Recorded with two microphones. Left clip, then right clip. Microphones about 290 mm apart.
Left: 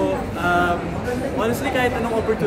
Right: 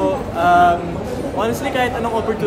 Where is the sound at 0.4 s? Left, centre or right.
Right.